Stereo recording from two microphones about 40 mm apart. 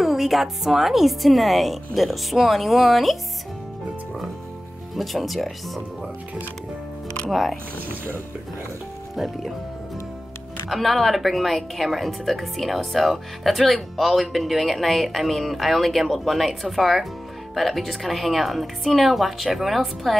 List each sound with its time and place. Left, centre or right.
0.0 s a woman's voice: centre
4.9 s a woman's voice: centre
7.2 s a woman's voice: centre
10.7 s a woman's voice: centre